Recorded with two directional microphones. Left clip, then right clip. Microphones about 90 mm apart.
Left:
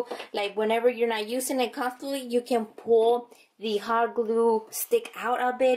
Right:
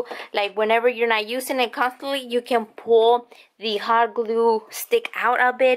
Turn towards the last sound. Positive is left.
turn(degrees=-20)  # may be behind; listen again after turning